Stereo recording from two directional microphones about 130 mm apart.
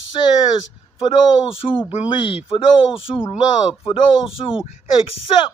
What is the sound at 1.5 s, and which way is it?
Speech, 45° left (ahead or behind).